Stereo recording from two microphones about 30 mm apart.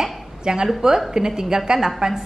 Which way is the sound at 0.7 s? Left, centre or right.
Centre.